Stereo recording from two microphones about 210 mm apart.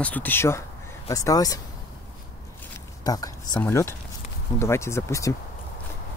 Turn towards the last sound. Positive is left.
turn(degrees=15)  # may be behind; listen again after turning